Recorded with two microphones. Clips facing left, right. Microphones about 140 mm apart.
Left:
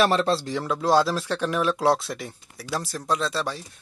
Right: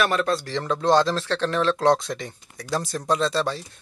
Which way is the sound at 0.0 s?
30° left (ahead or behind).